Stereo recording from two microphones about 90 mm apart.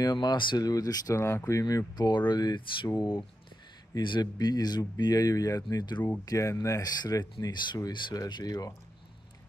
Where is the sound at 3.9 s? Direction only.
55° left (ahead or behind).